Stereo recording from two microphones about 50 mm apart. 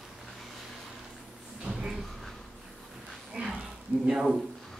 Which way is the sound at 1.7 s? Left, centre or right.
Centre.